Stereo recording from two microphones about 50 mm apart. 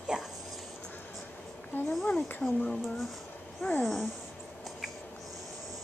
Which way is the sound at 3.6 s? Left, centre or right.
Left.